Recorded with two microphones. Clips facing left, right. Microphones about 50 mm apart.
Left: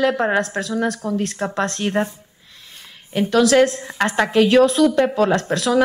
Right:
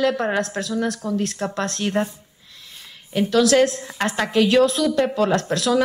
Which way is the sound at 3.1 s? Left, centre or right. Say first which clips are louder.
Left 2 dB; centre.